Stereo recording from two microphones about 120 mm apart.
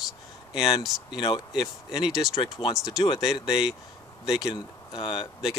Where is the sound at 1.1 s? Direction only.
40° left (ahead or behind).